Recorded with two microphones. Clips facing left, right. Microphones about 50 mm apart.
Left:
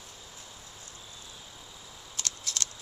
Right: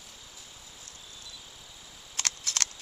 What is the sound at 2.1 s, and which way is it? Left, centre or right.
Scissors, right.